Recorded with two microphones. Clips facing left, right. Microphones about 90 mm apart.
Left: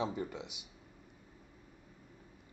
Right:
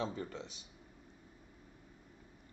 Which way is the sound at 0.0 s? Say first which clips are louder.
Left 3 dB; 15° left (ahead or behind).